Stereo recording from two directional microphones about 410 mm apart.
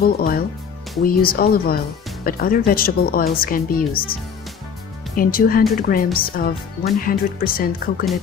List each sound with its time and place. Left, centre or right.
0.0 s speech: left